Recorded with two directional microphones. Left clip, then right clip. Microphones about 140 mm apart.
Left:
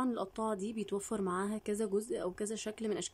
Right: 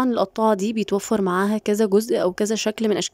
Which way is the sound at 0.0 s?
90° right.